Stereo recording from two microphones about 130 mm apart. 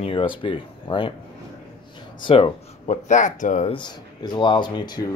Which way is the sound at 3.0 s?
75° left (ahead or behind).